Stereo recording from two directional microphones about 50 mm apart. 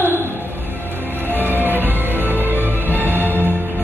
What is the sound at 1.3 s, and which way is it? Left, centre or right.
Music, right.